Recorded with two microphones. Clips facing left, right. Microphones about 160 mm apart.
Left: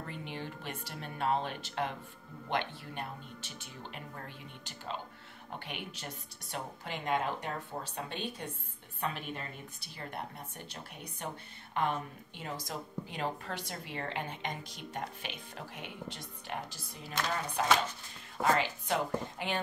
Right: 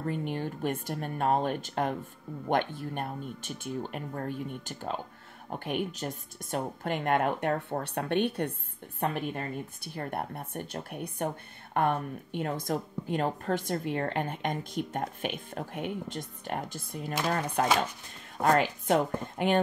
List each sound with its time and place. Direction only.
0.0 s speech: 50° right (ahead or behind)
9.0 s speech: 50° right (ahead or behind)